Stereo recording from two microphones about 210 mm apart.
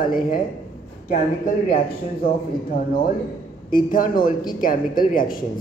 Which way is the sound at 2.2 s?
45° left (ahead or behind).